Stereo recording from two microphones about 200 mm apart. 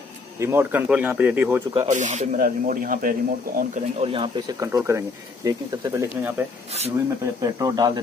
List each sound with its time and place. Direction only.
0.4 s speech: 10° right (ahead or behind)
1.7 s speech: 30° right (ahead or behind)
4.0 s speech: 25° right (ahead or behind)
7.4 s speech: 15° right (ahead or behind)